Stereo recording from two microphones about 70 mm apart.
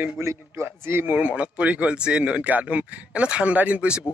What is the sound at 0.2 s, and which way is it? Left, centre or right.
Speech, right.